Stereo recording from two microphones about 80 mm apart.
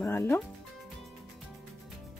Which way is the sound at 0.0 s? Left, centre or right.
Left.